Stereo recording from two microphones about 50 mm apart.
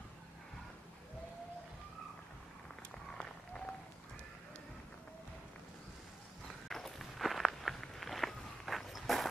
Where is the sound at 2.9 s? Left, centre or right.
Centre.